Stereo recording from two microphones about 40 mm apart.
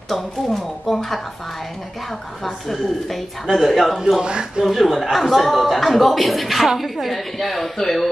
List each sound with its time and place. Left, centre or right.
0.1 s speech: centre
2.4 s speech: centre
4.2 s speech: centre
4.6 s speech: centre